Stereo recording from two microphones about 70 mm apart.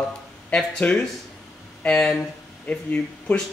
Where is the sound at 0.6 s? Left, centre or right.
Centre.